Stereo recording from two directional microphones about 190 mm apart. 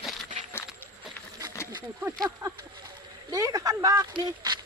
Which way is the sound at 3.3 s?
20° right (ahead or behind).